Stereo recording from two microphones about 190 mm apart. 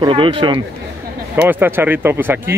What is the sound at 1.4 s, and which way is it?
Speech, 10° right (ahead or behind).